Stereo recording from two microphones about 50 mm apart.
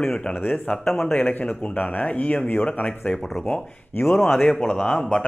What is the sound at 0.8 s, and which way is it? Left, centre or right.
Speech, centre.